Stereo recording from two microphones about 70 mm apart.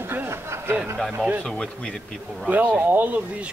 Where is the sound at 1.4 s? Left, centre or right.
Centre.